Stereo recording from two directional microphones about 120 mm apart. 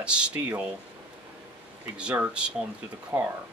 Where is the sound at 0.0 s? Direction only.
10° right (ahead or behind).